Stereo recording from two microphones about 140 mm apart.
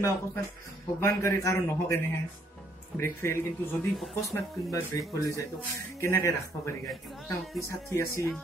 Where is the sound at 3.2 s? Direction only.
15° left (ahead or behind).